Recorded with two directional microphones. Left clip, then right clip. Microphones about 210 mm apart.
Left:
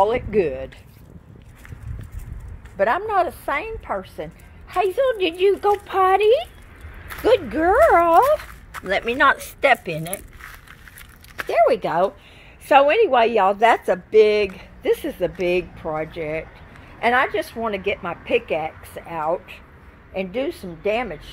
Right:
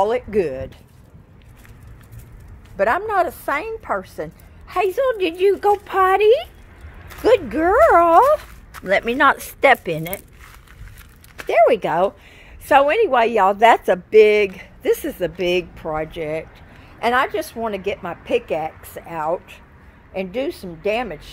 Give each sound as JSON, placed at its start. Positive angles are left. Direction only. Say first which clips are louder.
{"t": 0.0, "sound": "a woman's voice", "louder": "even", "side_deg": -20}
{"t": 2.8, "sound": "a woman's voice", "louder": "right 1 dB", "side_deg": -20}
{"t": 11.4, "sound": "a woman's voice", "louder": "right 3 dB", "side_deg": -25}
{"t": 12.6, "sound": "a woman's voice", "louder": "even", "side_deg": -10}